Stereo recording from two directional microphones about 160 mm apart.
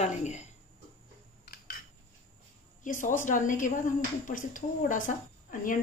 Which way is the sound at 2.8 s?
50° left (ahead or behind).